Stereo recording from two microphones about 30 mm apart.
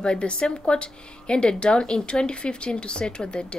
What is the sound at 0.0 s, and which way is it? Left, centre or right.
A woman's voice, left.